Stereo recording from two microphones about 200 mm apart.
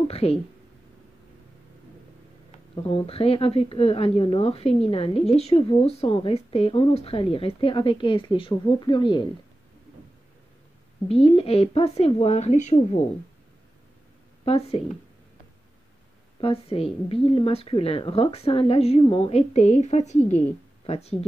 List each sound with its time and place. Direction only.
0.1 s a sound: 30° left (ahead or behind)
2.7 s a woman's voice: 30° left (ahead or behind)
11.1 s speech: 30° left (ahead or behind)
14.4 s speech: 30° left (ahead or behind)
16.3 s a woman's voice: 30° left (ahead or behind)